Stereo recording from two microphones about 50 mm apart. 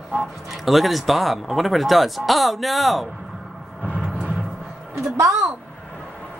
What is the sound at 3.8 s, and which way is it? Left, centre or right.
Music, centre.